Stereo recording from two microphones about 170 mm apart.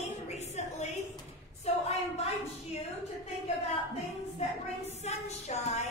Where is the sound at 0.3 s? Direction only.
40° left (ahead or behind).